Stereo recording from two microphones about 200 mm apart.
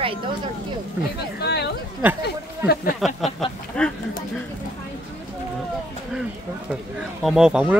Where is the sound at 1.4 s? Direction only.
55° left (ahead or behind).